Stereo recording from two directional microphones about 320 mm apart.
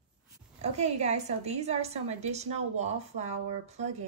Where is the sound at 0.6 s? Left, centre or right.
Right.